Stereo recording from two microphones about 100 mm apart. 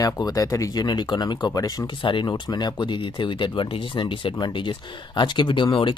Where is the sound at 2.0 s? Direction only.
55° left (ahead or behind).